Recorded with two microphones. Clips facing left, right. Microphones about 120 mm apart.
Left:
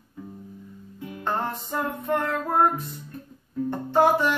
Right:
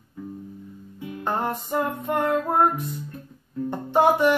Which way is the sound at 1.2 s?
15° right (ahead or behind).